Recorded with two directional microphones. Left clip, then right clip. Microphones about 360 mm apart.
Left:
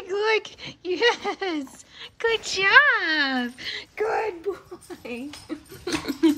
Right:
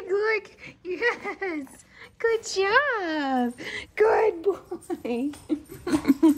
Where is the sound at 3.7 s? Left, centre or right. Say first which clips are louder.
Right 5 dB; right.